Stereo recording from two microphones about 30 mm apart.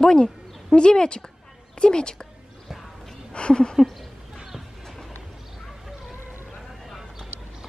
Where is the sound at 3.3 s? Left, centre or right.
Left.